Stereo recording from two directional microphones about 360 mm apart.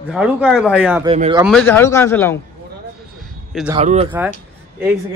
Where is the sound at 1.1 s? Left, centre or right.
Centre.